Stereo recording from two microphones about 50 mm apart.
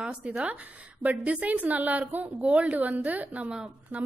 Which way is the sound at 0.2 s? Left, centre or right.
Right.